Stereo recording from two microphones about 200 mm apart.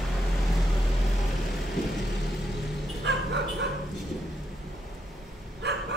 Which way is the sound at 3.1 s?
60° right (ahead or behind).